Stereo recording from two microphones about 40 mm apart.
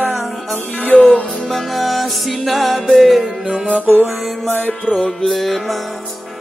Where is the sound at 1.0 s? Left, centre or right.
Left.